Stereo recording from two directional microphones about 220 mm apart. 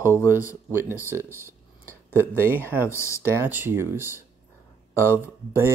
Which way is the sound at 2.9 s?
10° left (ahead or behind).